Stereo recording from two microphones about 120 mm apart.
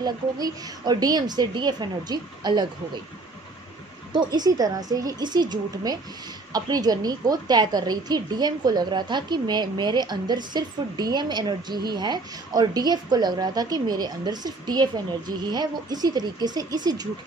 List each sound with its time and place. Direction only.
0.0 s a woman's voice: 35° right (ahead or behind)
4.1 s a woman's voice: 35° right (ahead or behind)